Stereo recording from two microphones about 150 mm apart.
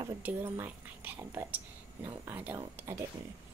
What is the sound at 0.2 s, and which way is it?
Speech, 15° right (ahead or behind).